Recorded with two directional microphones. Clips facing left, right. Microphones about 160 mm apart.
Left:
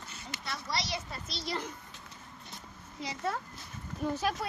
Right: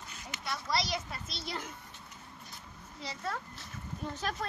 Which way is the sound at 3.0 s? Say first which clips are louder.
Left 4 dB; 15° left (ahead or behind).